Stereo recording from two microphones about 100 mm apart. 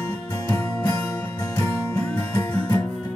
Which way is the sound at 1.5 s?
20° left (ahead or behind).